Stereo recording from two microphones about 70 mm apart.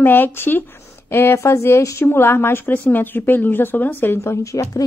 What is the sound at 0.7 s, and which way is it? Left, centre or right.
A woman's voice, left.